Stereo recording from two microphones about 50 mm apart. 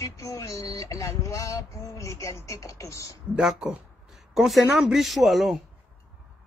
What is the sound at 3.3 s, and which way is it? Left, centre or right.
Speech, right.